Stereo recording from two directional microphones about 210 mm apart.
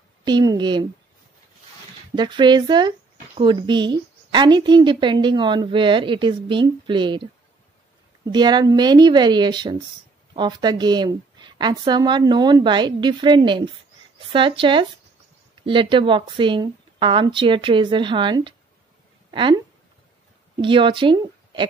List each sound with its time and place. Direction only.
0.2 s a sound: 20° right (ahead or behind)
2.1 s a woman's voice: 20° right (ahead or behind)
8.3 s a woman's voice: 20° right (ahead or behind)
20.5 s a woman's voice: 25° right (ahead or behind)